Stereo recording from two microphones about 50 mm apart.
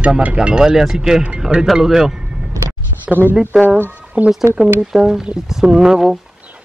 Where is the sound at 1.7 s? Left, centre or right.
Centre.